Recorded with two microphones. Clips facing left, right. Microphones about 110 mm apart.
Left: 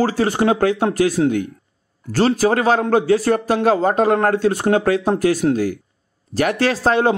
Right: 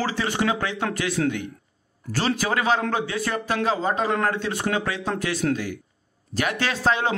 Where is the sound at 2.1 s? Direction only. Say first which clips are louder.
Left 8 dB; 40° left (ahead or behind).